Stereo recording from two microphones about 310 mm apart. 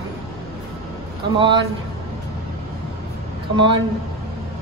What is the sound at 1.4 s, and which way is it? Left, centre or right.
Speech, centre.